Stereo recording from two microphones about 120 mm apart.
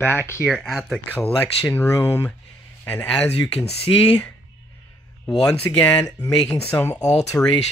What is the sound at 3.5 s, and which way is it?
Speech, 55° left (ahead or behind).